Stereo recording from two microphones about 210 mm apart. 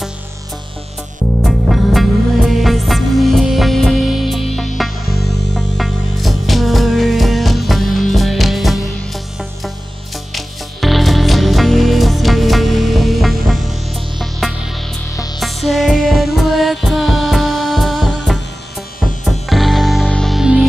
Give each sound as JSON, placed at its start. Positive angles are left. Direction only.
{"t": 1.4, "sound": "music", "side_deg": 0}